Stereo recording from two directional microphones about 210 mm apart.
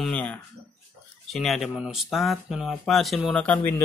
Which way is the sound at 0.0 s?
5° left (ahead or behind).